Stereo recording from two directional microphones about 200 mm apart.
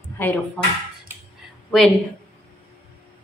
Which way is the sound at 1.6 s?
5° left (ahead or behind).